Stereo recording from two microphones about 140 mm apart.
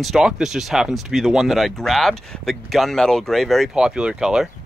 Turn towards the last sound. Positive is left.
turn(degrees=-5)  # may be behind; listen again after turning